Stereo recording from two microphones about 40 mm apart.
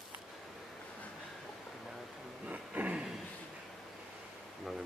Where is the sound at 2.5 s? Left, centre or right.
Right.